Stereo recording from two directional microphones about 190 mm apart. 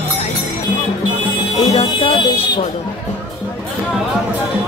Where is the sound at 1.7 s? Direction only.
30° left (ahead or behind).